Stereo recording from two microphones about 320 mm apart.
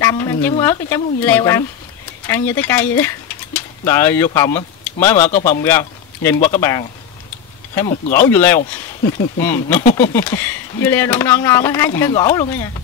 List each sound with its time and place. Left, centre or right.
0.0 s speech: centre
5.3 s a man's voice: left
5.6 s a man's voice: centre
8.3 s speech: centre
8.5 s speech: left
9.4 s speech: centre